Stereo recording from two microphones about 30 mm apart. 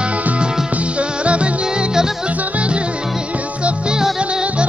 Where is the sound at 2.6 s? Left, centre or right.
Right.